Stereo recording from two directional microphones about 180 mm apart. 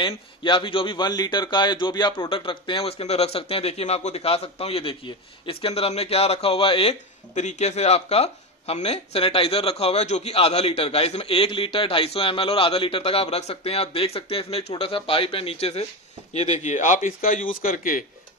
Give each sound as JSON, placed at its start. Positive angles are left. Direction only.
{"t": 0.0, "sound": "a man's voice", "side_deg": 25}